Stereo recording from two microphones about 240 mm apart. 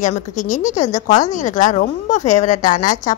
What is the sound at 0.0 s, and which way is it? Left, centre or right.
Speech, left.